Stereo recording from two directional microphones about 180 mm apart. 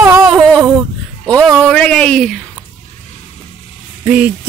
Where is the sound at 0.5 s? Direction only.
Centre (ahead or behind).